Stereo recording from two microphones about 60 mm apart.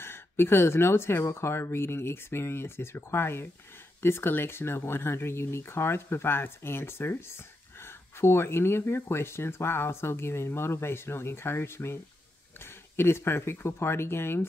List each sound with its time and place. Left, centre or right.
0.0 s speech: left